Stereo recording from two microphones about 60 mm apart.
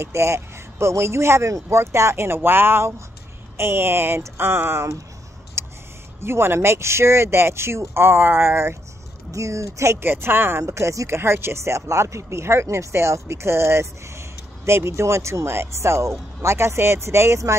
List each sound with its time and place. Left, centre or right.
0.0 s speech: right
5.6 s a sound: right
6.2 s speech: right
9.3 s speech: right
10.0 s speech: right
10.6 s speech: right
11.1 s speech: right